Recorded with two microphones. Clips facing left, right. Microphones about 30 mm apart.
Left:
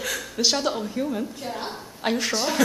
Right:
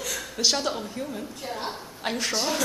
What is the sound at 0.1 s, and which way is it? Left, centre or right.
A woman's voice, centre.